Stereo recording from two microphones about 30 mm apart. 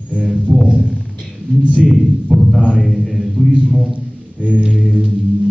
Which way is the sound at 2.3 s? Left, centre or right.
Centre.